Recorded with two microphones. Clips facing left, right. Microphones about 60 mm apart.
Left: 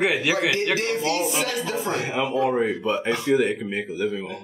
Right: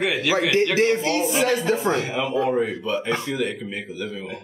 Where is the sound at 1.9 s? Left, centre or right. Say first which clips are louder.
Right 1 dB; centre.